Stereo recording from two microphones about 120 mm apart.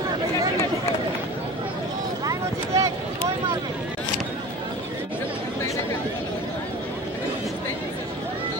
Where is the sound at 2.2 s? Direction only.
30° right (ahead or behind).